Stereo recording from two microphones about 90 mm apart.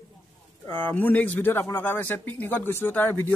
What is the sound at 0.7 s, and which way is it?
Speech, 20° left (ahead or behind).